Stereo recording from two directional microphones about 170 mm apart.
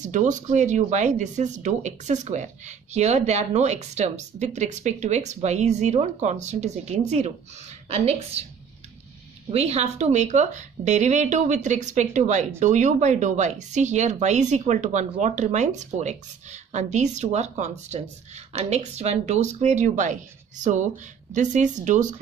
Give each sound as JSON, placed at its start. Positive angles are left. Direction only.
{"t": 0.0, "sound": "a woman's voice", "side_deg": -45}
{"t": 9.5, "sound": "speech", "side_deg": -40}